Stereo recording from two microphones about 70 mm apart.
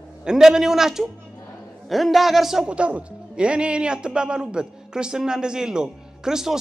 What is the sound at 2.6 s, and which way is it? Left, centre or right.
Speech, centre.